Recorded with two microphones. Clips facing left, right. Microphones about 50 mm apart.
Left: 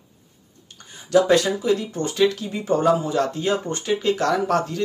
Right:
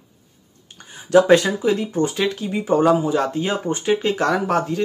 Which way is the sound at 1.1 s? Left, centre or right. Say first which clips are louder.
Right 3 dB; right.